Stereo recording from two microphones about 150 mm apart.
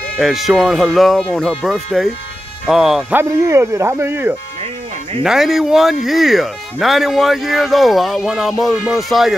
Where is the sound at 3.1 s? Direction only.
15° right (ahead or behind).